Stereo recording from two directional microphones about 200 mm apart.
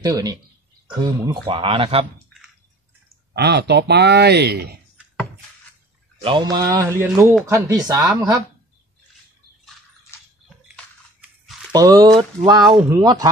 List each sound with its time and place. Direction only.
0.0 s speech: 20° right (ahead or behind)
3.3 s speech: 55° right (ahead or behind)
6.5 s speech: 20° right (ahead or behind)
7.1 s speech: 5° right (ahead or behind)
11.7 s speech: 20° right (ahead or behind)